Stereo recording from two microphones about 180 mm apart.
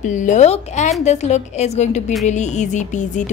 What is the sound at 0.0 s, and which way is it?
A woman's voice, 45° left (ahead or behind).